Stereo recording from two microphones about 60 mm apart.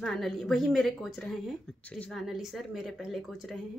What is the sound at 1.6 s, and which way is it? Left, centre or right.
Speech, left.